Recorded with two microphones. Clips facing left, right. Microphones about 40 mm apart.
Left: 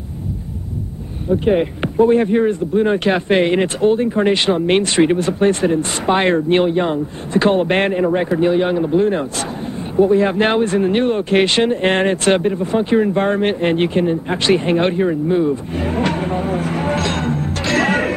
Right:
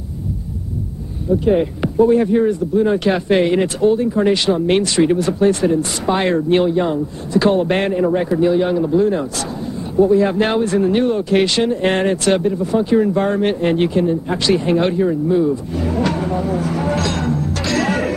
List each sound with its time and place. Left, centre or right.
1.3 s speech: left